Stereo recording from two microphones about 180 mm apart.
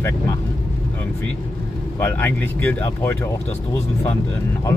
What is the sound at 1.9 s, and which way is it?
Speech, 10° left (ahead or behind).